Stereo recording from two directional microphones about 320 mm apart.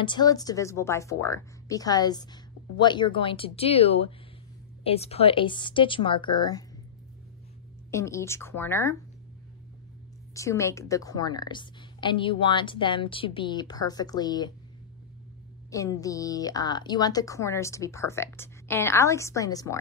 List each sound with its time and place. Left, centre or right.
0.0 s a woman's voice: centre
7.9 s a woman's voice: centre
10.3 s a woman's voice: centre
15.7 s a woman's voice: centre